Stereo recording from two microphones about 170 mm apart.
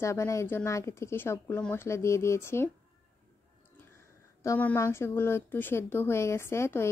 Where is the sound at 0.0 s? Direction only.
15° left (ahead or behind).